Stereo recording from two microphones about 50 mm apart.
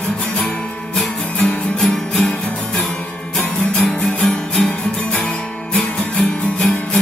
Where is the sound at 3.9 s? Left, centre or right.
Centre.